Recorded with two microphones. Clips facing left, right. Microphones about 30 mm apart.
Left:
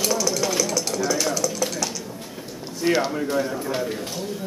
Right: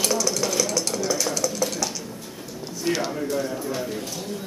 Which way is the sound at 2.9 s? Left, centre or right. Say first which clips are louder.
Left 4 dB; centre.